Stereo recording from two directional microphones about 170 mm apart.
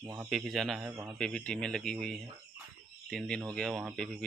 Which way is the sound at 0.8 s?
10° right (ahead or behind).